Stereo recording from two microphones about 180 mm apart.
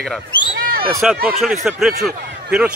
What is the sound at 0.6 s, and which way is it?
Basketball bounce, 55° right (ahead or behind).